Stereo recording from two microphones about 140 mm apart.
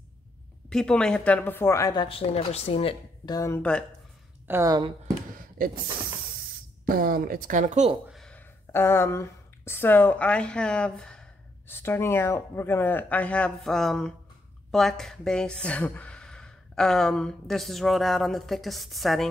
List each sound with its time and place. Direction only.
0.7 s speech: 5° left (ahead or behind); by 2.0 s 25° left (ahead or behind)
2.0 s speech: 45° left (ahead or behind)
3.3 s speech: 20° left (ahead or behind)
4.5 s speech: 20° right (ahead or behind)
6.9 s speech: 90° right; by 7.9 s 60° right (ahead or behind)
8.1 s speech: 5° left (ahead or behind)